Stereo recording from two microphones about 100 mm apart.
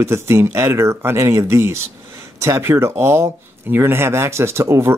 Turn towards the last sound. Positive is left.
turn(degrees=-30)  # may be behind; listen again after turning